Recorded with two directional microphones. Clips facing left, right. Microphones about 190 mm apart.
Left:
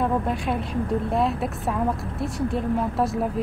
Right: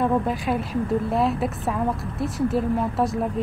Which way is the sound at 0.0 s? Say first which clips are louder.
Right 2 dB; centre (ahead or behind).